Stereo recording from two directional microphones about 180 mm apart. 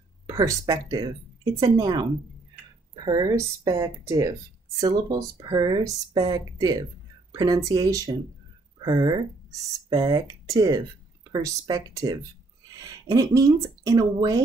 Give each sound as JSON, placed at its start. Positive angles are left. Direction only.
{"t": 0.3, "sound": "speech", "side_deg": -20}
{"t": 3.1, "sound": "speech", "side_deg": -20}